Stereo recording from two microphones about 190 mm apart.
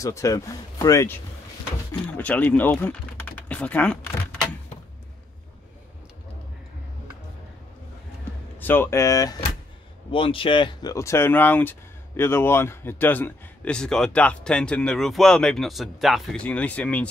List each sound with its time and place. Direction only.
0.0 s speech: 15° left (ahead or behind)
8.5 s a man's voice: 10° left (ahead or behind)